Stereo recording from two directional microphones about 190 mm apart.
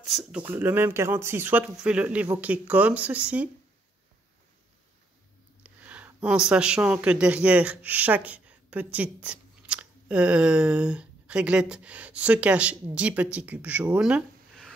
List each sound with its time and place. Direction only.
0.0 s speech: centre (ahead or behind)
5.6 s speech: 5° right (ahead or behind)